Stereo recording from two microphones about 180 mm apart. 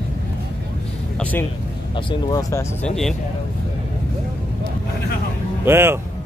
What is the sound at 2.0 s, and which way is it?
Speech, 30° left (ahead or behind).